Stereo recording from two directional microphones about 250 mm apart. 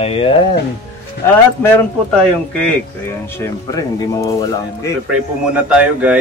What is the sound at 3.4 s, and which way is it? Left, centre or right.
Speech, centre.